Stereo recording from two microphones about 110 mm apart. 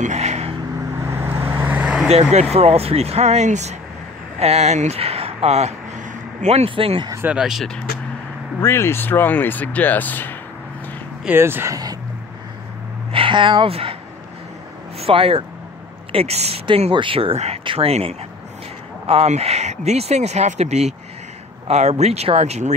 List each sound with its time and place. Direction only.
0.0 s vehicle: 90° right
0.9 s vehicle: 25° right (ahead or behind)
2.5 s speech: 65° right (ahead or behind); by 3.7 s 90° right
4.4 s speech: 80° right
6.7 s speech: 55° right (ahead or behind)
7.2 s speech: 5° right (ahead or behind)
8.5 s speech: 25° left (ahead or behind)
11.2 s speech: 20° right (ahead or behind)
13.1 s speech: 50° right (ahead or behind)
15.0 s speech: 60° right (ahead or behind)
16.6 s speech: 55° right (ahead or behind); by 22.8 s 90° right